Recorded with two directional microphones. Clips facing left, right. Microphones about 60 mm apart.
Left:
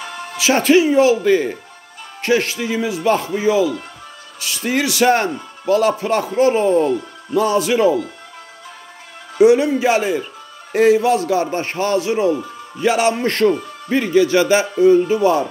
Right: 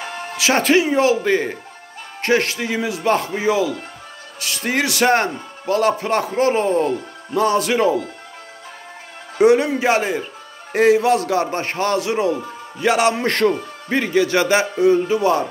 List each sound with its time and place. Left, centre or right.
0.0 s music: right
0.4 s a man's voice: right
2.2 s a man's voice: right
9.4 s a man's voice: right